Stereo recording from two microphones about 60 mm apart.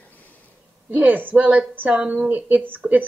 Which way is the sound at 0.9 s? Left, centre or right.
Right.